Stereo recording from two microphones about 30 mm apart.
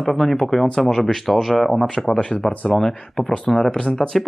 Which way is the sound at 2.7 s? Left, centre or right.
Centre.